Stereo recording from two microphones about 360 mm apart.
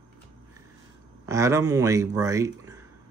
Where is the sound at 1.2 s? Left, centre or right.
Centre.